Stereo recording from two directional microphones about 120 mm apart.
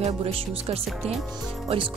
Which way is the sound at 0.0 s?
55° right (ahead or behind).